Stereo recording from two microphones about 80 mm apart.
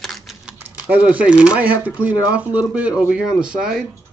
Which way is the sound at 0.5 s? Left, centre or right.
Centre.